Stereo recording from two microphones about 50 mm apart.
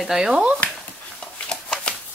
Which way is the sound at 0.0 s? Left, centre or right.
Centre.